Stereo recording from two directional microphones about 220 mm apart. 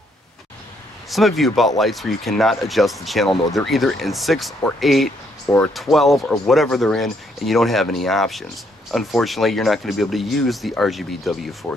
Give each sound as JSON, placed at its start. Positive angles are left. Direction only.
{"t": 1.1, "sound": "speech", "side_deg": 0}
{"t": 11.7, "sound": "speech", "side_deg": 15}